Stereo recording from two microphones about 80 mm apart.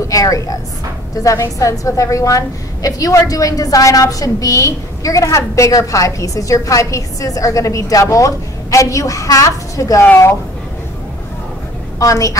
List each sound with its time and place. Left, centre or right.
0.1 s a woman's voice: left
12.0 s a woman's voice: left